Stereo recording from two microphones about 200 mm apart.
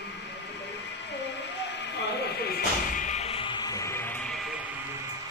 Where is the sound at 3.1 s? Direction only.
30° left (ahead or behind); by 4.4 s 5° left (ahead or behind).